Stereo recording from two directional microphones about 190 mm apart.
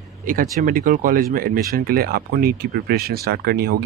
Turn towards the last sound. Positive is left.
turn(degrees=-55)  # may be behind; listen again after turning